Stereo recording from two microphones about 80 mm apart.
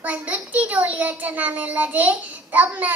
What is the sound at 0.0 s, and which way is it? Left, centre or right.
A child's voice, centre.